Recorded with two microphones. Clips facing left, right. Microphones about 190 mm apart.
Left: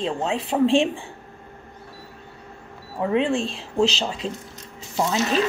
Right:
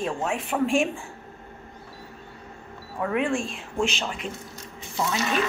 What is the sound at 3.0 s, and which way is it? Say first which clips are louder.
A woman's voice: left 4 dB; 25° left (ahead or behind).